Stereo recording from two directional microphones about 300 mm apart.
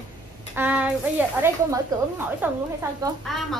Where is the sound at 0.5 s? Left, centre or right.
Centre.